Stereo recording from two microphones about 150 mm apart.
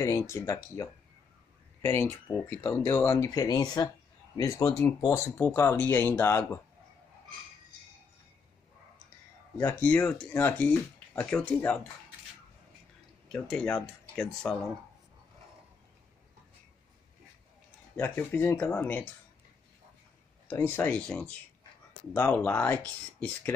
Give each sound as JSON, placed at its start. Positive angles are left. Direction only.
{"t": 0.0, "sound": "speech", "side_deg": 20}
{"t": 1.8, "sound": "speech", "side_deg": 15}
{"t": 9.6, "sound": "speech", "side_deg": 10}
{"t": 13.3, "sound": "speech", "side_deg": 5}
{"t": 17.9, "sound": "speech", "side_deg": 15}
{"t": 20.4, "sound": "speech", "side_deg": 15}